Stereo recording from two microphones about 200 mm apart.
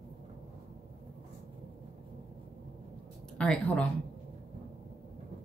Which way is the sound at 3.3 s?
5° left (ahead or behind).